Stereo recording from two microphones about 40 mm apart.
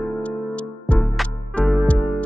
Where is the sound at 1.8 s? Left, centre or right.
Left.